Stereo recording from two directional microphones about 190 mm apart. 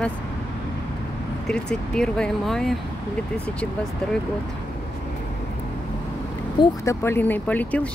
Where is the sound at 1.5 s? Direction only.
5° left (ahead or behind).